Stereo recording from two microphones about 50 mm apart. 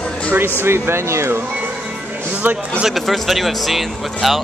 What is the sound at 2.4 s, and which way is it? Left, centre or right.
Speech, right.